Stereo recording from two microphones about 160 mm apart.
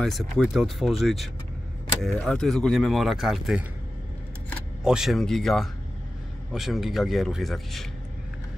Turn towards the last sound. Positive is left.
turn(degrees=0)  # may be behind; listen again after turning